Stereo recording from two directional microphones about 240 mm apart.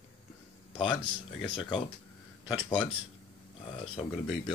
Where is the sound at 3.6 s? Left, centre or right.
Left.